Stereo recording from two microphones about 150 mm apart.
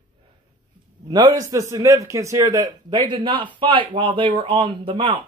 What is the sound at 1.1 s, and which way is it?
A man's voice, 25° right (ahead or behind).